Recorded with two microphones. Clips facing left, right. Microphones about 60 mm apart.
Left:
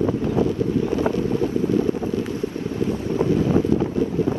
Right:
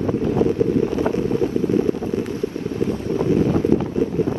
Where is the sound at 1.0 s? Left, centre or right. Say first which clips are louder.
Right 1 dB; right.